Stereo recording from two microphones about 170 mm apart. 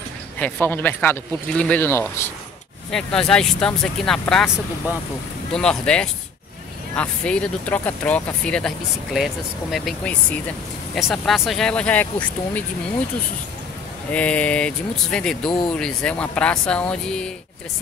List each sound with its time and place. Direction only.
0.4 s speech: 10° left (ahead or behind)
2.9 s speech: 5° left (ahead or behind)
5.5 s speech: 5° left (ahead or behind)
14.1 s speech: 10° left (ahead or behind)